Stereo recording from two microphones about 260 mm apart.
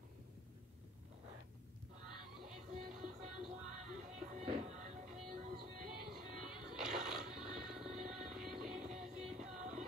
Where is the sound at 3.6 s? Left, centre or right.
Right.